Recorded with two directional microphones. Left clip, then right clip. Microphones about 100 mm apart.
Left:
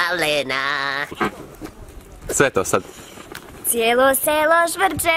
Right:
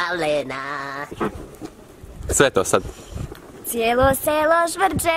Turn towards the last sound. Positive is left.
turn(degrees=0)  # may be behind; listen again after turning